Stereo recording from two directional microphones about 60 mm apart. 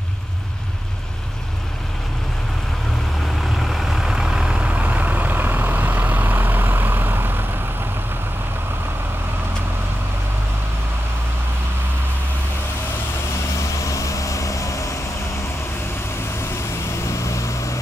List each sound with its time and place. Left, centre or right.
3.5 s vehicle: centre; by 7.4 s right
13.7 s vehicle: left
17.0 s vehicle: left